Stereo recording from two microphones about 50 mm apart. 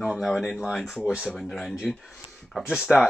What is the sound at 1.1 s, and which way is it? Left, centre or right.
Speech, right.